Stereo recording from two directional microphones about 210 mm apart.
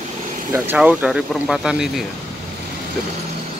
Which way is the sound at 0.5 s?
10° right (ahead or behind).